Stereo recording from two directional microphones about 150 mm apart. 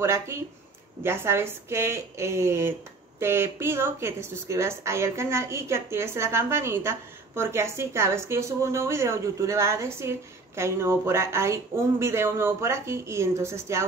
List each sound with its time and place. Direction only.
0.0 s a woman's voice: 20° right (ahead or behind)